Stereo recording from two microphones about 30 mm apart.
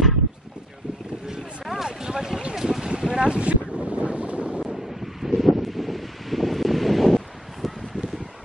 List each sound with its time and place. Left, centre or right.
1.2 s boat: right
2.0 s a sound: right
2.5 s boat: centre
3.0 s wind noise: right
4.6 s wind: centre